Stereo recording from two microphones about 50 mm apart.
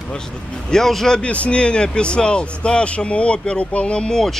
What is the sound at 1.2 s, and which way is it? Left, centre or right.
Speech, left.